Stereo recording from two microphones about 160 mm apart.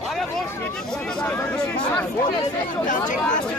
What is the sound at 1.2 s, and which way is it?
Speech, 10° left (ahead or behind).